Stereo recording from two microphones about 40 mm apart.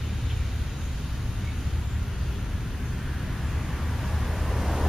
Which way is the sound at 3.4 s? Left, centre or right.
Centre.